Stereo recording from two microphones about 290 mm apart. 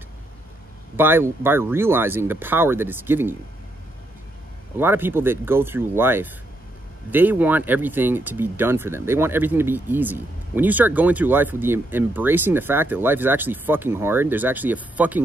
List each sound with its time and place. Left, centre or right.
0.9 s speech: centre
4.7 s speech: centre